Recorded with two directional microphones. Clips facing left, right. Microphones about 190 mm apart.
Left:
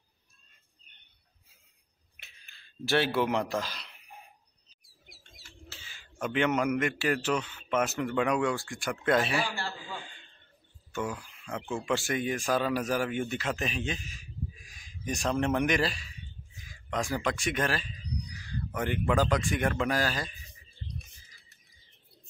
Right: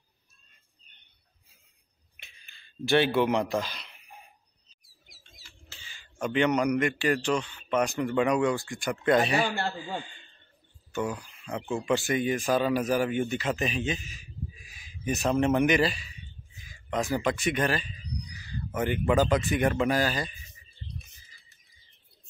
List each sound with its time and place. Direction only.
2.1 s a sound: centre (ahead or behind)
5.0 s bird: 60° left (ahead or behind)
5.7 s speech: centre (ahead or behind)
9.6 s a man's voice: 60° right (ahead or behind)
10.9 s speech: centre (ahead or behind)